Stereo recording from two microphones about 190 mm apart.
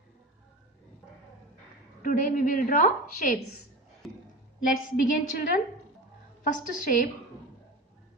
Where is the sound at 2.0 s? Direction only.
45° left (ahead or behind).